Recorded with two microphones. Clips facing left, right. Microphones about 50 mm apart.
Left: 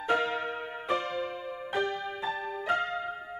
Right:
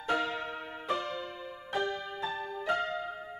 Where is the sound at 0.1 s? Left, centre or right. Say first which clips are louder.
Left 3 dB; centre.